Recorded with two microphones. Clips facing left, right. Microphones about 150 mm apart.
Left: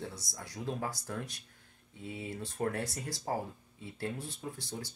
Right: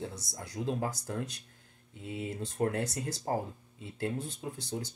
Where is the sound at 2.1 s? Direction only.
20° right (ahead or behind).